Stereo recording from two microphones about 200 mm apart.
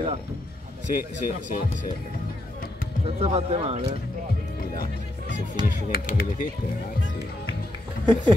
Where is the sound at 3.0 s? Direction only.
30° right (ahead or behind).